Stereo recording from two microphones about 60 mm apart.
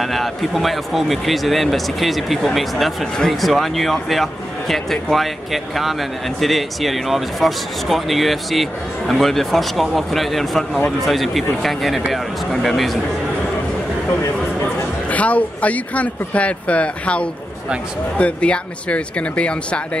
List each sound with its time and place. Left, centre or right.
0.0 s speech: centre
15.0 s speech: left